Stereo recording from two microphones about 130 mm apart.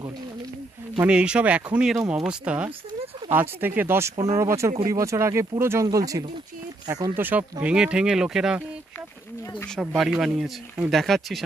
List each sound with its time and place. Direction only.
1.0 s speech: 10° right (ahead or behind); by 6.2 s 25° right (ahead or behind)
7.2 s speech: 15° right (ahead or behind)
9.8 s speech: centre (ahead or behind)